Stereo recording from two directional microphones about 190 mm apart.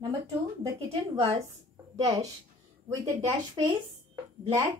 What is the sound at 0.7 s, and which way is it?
Speech, 30° right (ahead or behind).